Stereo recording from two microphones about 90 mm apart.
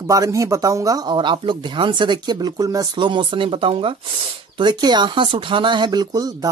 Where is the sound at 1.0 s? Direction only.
60° right (ahead or behind); by 3.0 s 45° right (ahead or behind).